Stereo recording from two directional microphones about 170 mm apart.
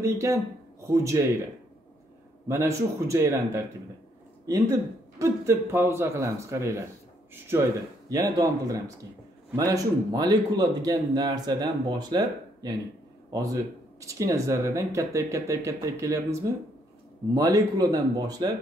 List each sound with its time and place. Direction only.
0.0 s speech: 20° right (ahead or behind)
2.4 s speech: 20° right (ahead or behind)
5.2 s speech: 15° right (ahead or behind)
8.1 s speech: 20° right (ahead or behind)